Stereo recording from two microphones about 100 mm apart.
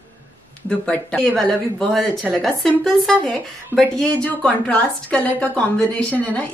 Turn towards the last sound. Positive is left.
turn(degrees=15)  # may be behind; listen again after turning